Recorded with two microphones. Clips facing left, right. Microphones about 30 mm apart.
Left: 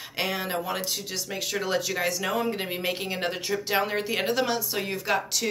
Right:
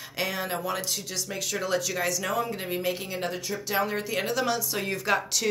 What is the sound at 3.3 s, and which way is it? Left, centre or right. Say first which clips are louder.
Speech: left 4 dB; left.